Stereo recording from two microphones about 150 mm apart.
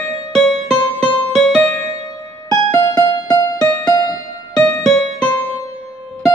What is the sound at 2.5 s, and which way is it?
Music, 25° left (ahead or behind).